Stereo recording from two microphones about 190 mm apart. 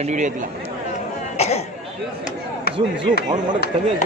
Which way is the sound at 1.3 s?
35° left (ahead or behind).